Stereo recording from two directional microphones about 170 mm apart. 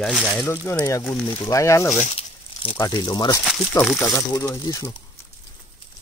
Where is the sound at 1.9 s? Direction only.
40° left (ahead or behind).